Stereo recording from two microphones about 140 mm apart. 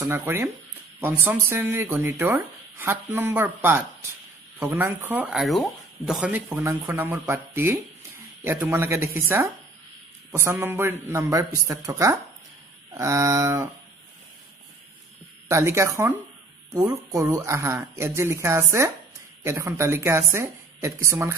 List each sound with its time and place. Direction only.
0.0 s speech: 15° right (ahead or behind)
6.5 s speech: 20° right (ahead or behind)
15.4 s speech: 20° right (ahead or behind)